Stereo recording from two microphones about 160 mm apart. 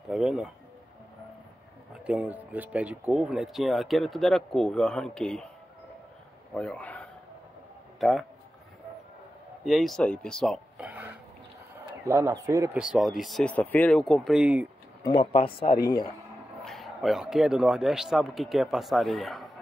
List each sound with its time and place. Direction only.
0.1 s speech: 5° right (ahead or behind)
2.0 s speech: 10° right (ahead or behind)
6.5 s a man's voice: 5° left (ahead or behind)
9.7 s speech: centre (ahead or behind)
10.8 s burping: 10° right (ahead or behind)
12.1 s speech: 20° right (ahead or behind)
12.7 s speech: 5° right (ahead or behind)
15.3 s speech: 35° left (ahead or behind)
16.6 s speech: centre (ahead or behind)